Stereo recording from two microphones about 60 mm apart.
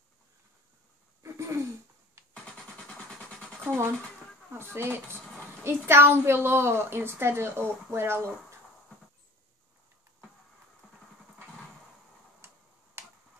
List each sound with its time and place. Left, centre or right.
1.2 s a sound: right
2.3 s music: centre
3.6 s a woman's voice: right
13.0 s finger snapping: right